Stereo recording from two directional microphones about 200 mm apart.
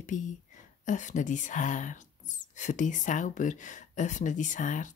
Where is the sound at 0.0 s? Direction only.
40° left (ahead or behind).